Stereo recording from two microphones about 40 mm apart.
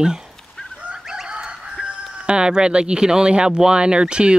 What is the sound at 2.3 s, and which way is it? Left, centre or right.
Speech, right.